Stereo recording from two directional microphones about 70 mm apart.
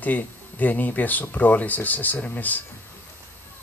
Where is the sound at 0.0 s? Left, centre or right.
Left.